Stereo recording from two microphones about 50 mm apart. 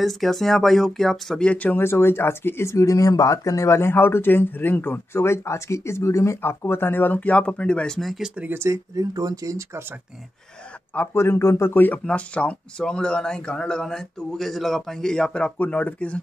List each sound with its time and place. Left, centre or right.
0.0 s speech: centre
1.4 s speech: left
1.8 s speech: left
5.1 s speech: left
6.4 s speech: left; by 8.0 s centre
8.5 s speech: right
11.1 s a man's voice: left
12.1 s speech: left
15.5 s speech: left